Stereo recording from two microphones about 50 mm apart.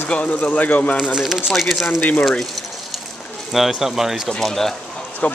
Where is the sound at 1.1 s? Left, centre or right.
Centre.